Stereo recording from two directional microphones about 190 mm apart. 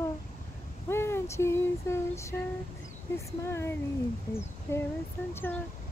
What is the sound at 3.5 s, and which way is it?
Speech, 15° left (ahead or behind).